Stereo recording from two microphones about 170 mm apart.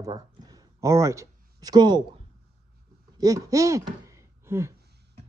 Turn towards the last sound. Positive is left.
turn(degrees=-15)  # may be behind; listen again after turning